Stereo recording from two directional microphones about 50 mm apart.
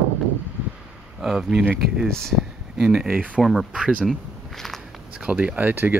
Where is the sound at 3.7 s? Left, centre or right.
Right.